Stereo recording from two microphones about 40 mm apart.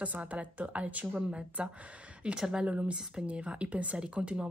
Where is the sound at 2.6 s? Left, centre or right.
Right.